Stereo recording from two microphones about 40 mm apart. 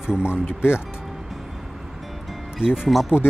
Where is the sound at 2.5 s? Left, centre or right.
Centre.